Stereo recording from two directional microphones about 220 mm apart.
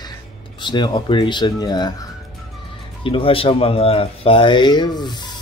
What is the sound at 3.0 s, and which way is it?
Speech, 25° left (ahead or behind).